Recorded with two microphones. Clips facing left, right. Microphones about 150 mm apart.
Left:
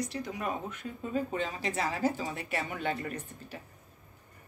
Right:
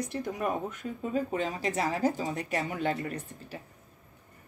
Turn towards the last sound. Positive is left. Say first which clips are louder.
# right 2 dB
turn(degrees=-35)  # may be behind; listen again after turning